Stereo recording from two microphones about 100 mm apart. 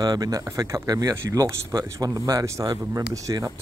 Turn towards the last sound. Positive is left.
turn(degrees=-35)  # may be behind; listen again after turning